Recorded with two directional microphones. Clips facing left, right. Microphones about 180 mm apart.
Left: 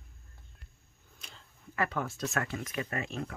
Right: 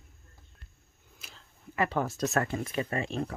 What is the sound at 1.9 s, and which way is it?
Speech, 40° right (ahead or behind).